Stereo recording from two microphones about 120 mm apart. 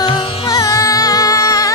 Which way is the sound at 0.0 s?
30° left (ahead or behind).